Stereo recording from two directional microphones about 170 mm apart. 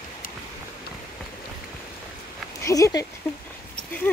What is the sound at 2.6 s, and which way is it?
Speech, 15° left (ahead or behind).